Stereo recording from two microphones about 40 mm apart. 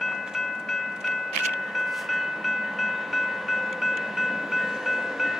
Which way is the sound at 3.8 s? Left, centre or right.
Centre.